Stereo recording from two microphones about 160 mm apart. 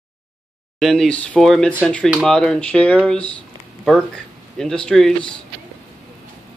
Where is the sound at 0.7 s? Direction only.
Centre (ahead or behind).